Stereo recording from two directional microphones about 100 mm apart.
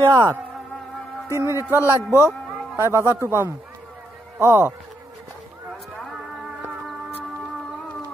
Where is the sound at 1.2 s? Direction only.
30° right (ahead or behind).